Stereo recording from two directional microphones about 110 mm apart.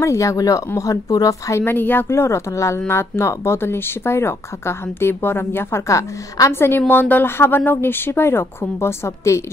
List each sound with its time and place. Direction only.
0.0 s speech: 30° left (ahead or behind)
1.6 s speech: 15° left (ahead or behind)